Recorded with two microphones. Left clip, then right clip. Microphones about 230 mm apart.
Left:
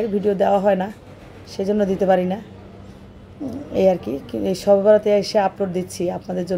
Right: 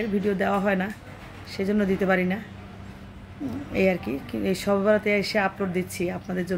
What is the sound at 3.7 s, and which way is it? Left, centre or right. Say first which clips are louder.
A woman's voice: left 7 dB; centre.